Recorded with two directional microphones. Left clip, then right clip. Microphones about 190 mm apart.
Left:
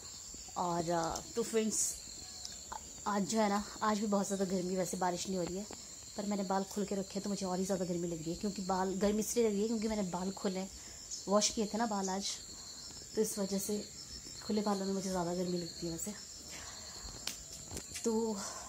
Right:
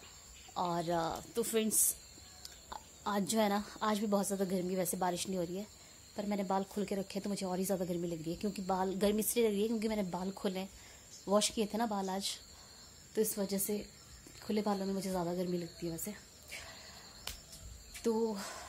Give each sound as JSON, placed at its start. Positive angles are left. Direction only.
{"t": 0.6, "sound": "speech", "side_deg": -20}
{"t": 16.0, "sound": "cricket", "side_deg": -25}
{"t": 17.9, "sound": "speech", "side_deg": 0}